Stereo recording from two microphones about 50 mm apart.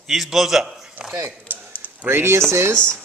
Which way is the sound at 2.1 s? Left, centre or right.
Right.